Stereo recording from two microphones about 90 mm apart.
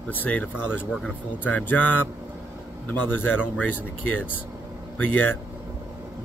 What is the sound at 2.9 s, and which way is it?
Speech, 20° left (ahead or behind).